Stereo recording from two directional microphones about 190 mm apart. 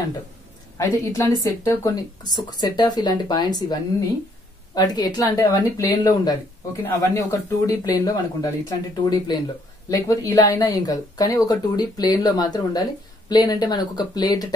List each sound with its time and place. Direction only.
0.7 s speech: 15° left (ahead or behind)
4.7 s speech: 20° left (ahead or behind)